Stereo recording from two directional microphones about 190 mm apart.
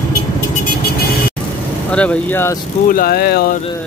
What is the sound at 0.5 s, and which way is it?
Vehicle, 50° left (ahead or behind).